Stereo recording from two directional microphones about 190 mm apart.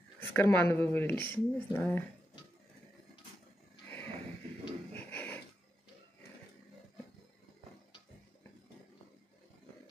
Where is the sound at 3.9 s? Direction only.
10° left (ahead or behind).